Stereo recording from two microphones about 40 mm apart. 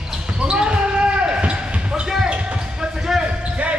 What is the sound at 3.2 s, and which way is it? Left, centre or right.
Basketball bounce, right.